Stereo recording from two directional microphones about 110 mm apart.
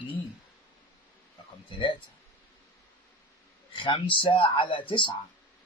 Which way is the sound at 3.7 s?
50° left (ahead or behind).